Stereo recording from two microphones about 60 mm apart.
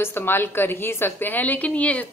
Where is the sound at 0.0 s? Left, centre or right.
Left.